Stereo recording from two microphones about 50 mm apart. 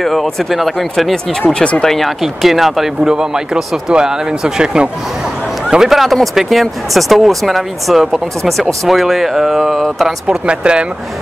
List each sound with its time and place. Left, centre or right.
0.0 s speech: centre
1.5 s speech: centre
1.9 s speech: centre
10.2 s speech: centre